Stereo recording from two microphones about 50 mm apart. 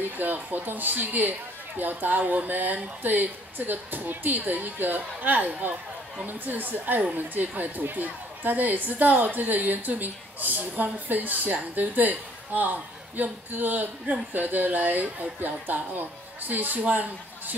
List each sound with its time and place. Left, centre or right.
0.0 s a woman's voice: right